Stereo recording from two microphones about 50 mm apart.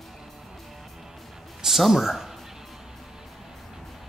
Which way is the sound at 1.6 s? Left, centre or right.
Centre.